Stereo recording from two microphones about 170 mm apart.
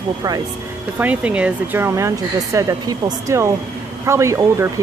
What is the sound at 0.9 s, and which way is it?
Speech, 10° right (ahead or behind).